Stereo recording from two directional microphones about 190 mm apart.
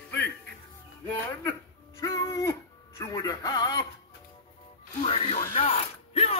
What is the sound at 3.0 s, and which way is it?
Speech, 20° left (ahead or behind).